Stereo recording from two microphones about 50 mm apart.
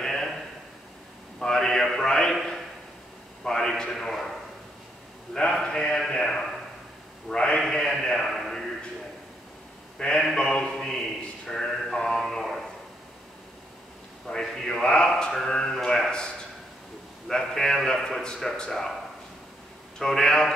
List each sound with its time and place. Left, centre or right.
0.0 s a sound: centre
1.4 s a sound: centre
4.0 s a man's voice: centre
5.5 s a man's voice: centre
9.9 s a man's voice: centre
10.7 s a sound: centre
14.3 s speech: centre
17.3 s speech: centre
20.0 s speech: centre